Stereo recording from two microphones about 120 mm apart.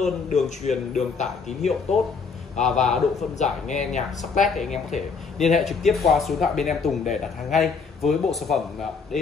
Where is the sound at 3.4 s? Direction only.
80° left.